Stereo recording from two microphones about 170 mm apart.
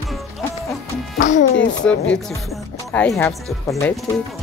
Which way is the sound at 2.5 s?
5° left (ahead or behind).